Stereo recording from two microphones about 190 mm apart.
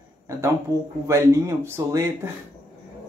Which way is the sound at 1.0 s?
15° right (ahead or behind).